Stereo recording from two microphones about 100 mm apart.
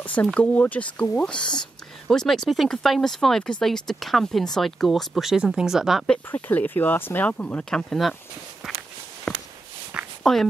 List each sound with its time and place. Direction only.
0.0 s speech: 15° left (ahead or behind); by 6.0 s 5° right (ahead or behind)
6.3 s speech: 20° left (ahead or behind)
9.3 s walk: 5° left (ahead or behind)
10.2 s speech: 5° left (ahead or behind)